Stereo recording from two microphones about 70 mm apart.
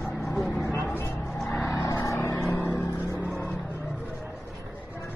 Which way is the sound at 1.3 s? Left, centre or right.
Centre.